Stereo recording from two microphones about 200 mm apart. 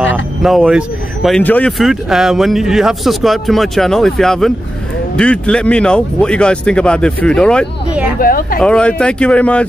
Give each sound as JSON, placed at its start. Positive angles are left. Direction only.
{"t": 0.4, "sound": "speech", "side_deg": 0}
{"t": 8.2, "sound": "speech", "side_deg": 45}
{"t": 8.5, "sound": "speech", "side_deg": 5}